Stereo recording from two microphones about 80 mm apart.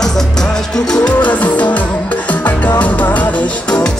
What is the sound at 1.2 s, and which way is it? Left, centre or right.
Music, centre.